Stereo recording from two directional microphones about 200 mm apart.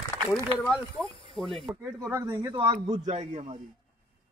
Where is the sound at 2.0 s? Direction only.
15° right (ahead or behind).